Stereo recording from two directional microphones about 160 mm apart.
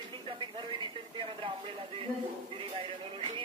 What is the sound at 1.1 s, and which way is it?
Radio, 35° right (ahead or behind).